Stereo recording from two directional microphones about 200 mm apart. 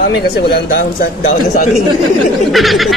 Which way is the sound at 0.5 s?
50° left (ahead or behind).